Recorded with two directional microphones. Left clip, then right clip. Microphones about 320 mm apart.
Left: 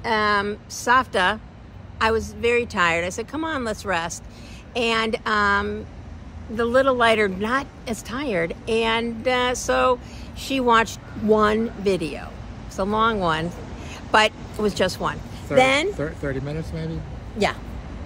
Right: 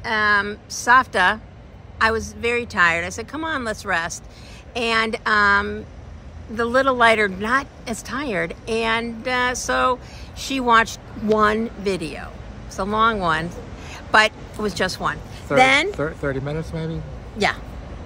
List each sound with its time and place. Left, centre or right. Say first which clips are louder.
0.0 s a woman's voice: right 2 dB; centre
16.0 s speech: right 3 dB; centre